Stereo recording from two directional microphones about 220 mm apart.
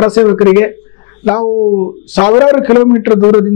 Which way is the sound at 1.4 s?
25° left (ahead or behind).